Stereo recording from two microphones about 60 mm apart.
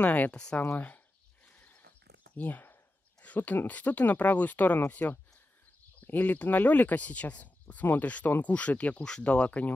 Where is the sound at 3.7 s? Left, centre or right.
Left.